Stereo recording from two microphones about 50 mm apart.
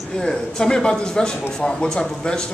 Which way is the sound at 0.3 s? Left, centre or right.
Centre.